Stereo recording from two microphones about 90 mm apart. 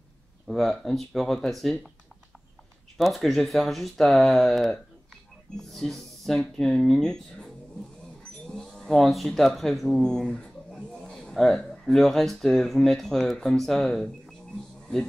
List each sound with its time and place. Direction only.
0.5 s speech: centre (ahead or behind)
3.0 s speech: centre (ahead or behind)
9.6 s a sound: centre (ahead or behind)
11.8 s speech: centre (ahead or behind)